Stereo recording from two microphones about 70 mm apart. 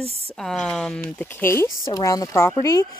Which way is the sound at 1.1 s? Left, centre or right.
Left.